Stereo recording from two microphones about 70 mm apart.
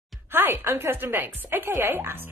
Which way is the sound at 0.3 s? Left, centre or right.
Right.